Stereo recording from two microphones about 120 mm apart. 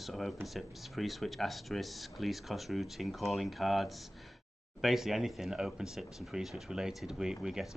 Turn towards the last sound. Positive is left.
turn(degrees=-5)  # may be behind; listen again after turning